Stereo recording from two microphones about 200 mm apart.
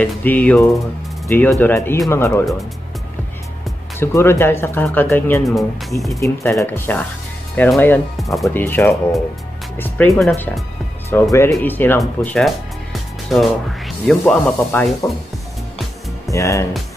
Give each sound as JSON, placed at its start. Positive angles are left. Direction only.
{"t": 0.0, "sound": "speech", "side_deg": 10}
{"t": 4.0, "sound": "speech", "side_deg": 10}
{"t": 6.1, "sound": "speech", "side_deg": 15}
{"t": 16.3, "sound": "speech", "side_deg": 15}